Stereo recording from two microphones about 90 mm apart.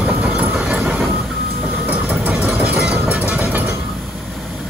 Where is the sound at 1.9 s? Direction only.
20° right (ahead or behind).